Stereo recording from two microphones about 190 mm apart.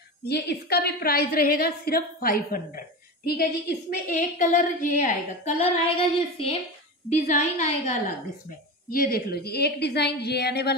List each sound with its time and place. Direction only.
0.3 s a woman's voice: 60° left (ahead or behind); by 8.0 s 40° left (ahead or behind)
8.9 s a woman's voice: 50° left (ahead or behind)